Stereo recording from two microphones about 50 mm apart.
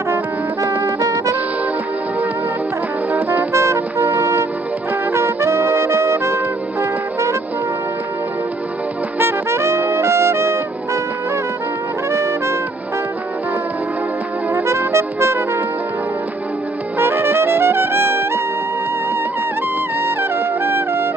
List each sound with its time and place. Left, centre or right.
3.5 s music: right
5.4 s brass instrument: right
9.2 s music: right
12.1 s music: right
14.5 s music: right
17.0 s brass instrument: right
20.0 s music: right